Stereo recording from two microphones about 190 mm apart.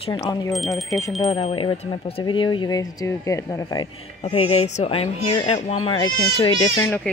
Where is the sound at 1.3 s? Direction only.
30° left (ahead or behind).